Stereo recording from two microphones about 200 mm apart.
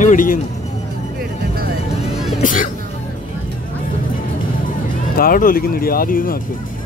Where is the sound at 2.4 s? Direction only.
40° left (ahead or behind).